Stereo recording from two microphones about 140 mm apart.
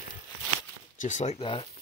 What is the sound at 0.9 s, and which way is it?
Speech, 60° left (ahead or behind).